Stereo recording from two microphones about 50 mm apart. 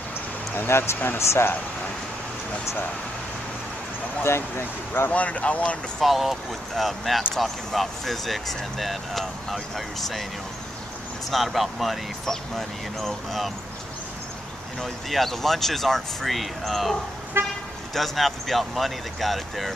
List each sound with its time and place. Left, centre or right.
0.7 s speech: left
4.2 s speech: left
5.1 s speech: left
5.9 s speech: centre
11.2 s speech: centre
14.8 s speech: centre
17.4 s speech: right
17.9 s speech: centre